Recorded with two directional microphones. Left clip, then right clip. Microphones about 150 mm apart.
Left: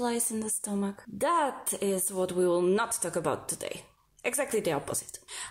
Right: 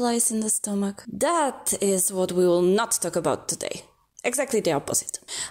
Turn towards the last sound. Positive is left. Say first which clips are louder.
# right 9 dB
turn(degrees=-40)  # may be behind; listen again after turning